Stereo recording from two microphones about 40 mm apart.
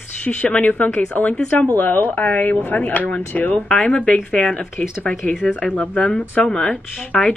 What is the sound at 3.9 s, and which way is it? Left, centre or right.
A woman's voice, left.